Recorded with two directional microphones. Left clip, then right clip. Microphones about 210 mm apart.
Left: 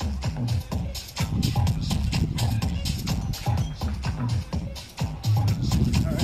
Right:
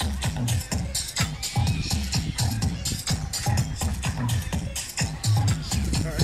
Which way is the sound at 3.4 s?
40° right (ahead or behind).